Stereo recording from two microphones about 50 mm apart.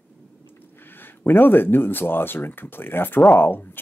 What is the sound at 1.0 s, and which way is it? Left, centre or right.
Speech, left.